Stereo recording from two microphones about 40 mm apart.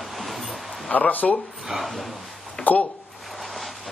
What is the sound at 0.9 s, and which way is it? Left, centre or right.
Speech, left.